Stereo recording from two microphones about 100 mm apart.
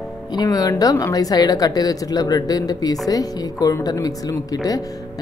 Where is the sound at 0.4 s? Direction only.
40° left (ahead or behind).